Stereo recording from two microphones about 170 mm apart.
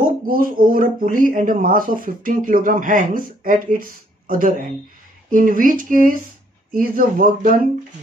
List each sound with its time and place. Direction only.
0.2 s speech: 55° right (ahead or behind)